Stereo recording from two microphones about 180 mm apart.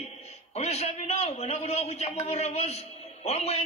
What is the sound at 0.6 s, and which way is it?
A man's voice, 35° left (ahead or behind).